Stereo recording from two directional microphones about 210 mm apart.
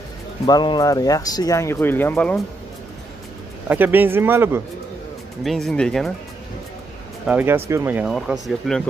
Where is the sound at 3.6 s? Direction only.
10° right (ahead or behind).